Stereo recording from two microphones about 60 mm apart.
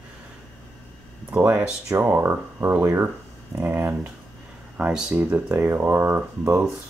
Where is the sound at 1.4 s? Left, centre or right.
Right.